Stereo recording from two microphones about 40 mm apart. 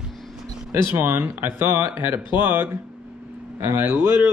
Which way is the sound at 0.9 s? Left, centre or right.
Right.